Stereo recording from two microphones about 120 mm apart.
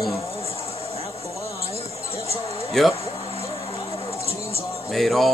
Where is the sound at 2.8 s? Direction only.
5° left (ahead or behind).